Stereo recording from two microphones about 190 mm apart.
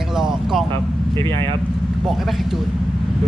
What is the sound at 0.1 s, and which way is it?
Vehicle, 5° right (ahead or behind).